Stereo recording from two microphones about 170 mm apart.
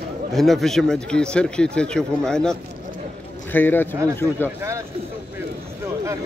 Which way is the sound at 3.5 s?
10° left (ahead or behind).